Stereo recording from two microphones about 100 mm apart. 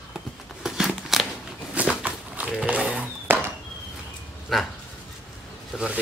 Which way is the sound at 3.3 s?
25° right (ahead or behind).